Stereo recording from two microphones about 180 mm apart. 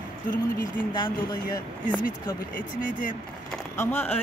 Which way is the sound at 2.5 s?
45° left (ahead or behind).